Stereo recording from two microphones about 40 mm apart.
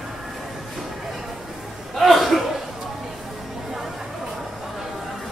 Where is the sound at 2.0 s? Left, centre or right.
Centre.